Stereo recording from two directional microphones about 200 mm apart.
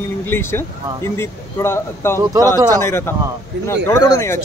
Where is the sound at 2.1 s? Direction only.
15° right (ahead or behind).